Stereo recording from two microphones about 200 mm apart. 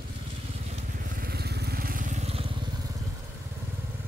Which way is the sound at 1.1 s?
50° right (ahead or behind).